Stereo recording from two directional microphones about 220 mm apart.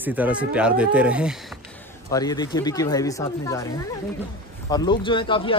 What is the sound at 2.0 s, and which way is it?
Speech, 15° left (ahead or behind).